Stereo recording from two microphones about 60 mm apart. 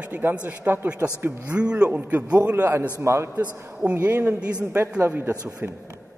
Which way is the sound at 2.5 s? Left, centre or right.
Right.